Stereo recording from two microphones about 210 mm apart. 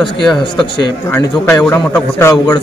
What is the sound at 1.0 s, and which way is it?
A man's voice, 10° left (ahead or behind).